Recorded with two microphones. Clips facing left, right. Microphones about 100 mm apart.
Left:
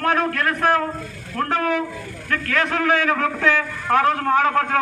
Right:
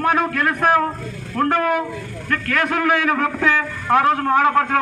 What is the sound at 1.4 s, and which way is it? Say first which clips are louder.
Speech: right 5 dB; 30° right (ahead or behind).